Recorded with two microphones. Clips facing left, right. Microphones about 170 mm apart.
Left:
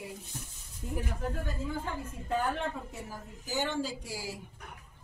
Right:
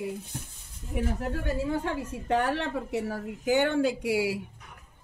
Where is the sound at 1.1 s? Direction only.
75° right (ahead or behind).